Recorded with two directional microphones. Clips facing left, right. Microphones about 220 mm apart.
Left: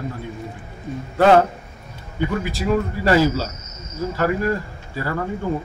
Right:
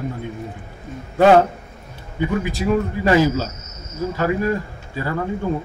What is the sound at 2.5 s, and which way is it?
A man's voice, 20° right (ahead or behind).